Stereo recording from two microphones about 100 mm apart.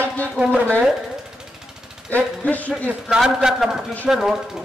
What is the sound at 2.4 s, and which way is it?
Speech, 15° left (ahead or behind).